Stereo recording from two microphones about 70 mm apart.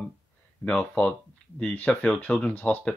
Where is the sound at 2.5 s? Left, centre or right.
Left.